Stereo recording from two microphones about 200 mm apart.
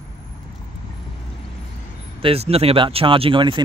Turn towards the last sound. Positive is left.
turn(degrees=-25)  # may be behind; listen again after turning